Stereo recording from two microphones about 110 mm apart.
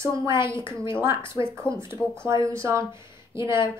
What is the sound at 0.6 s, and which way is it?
Speech, 45° left (ahead or behind).